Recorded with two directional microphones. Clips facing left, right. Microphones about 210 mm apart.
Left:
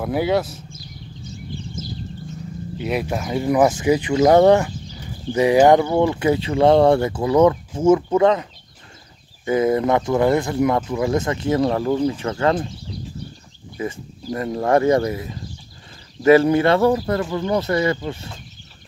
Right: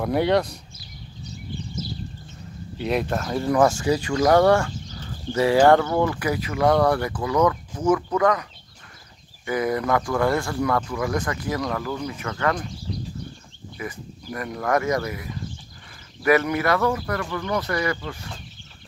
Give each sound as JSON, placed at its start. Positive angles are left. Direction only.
{"t": 0.0, "sound": "speech", "side_deg": 5}
{"t": 2.8, "sound": "speech", "side_deg": 5}
{"t": 13.7, "sound": "speech", "side_deg": 25}